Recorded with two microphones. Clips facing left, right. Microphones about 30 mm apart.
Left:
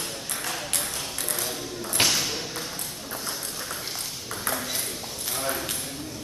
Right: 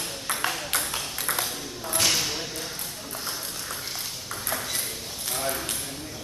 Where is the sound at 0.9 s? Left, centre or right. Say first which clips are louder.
Right 2 dB; right.